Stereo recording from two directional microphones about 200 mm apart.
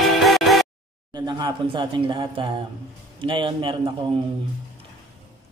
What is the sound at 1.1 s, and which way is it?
A man's voice, 20° right (ahead or behind).